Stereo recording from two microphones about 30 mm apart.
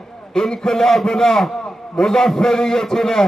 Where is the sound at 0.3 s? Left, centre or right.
Centre.